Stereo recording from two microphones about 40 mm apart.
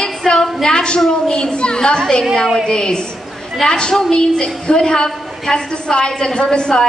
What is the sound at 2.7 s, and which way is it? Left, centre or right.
A woman's voice, centre.